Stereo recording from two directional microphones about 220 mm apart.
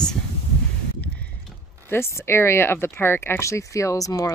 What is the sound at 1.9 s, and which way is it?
Speech, 10° left (ahead or behind).